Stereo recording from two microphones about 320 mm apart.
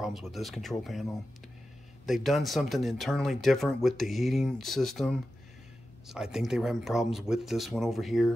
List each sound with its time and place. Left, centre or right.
0.0 s speech: centre
2.0 s speech: centre